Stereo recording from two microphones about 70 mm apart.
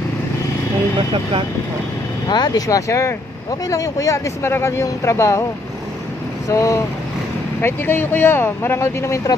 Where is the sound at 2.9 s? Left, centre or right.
Left.